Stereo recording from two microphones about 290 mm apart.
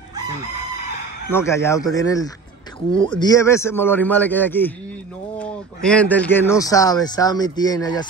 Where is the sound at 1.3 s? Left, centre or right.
Centre.